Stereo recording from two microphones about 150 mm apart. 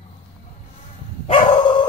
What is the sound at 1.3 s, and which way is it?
Dog, 35° left (ahead or behind).